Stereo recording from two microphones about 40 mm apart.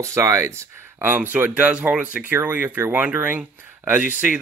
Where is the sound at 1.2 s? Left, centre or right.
Right.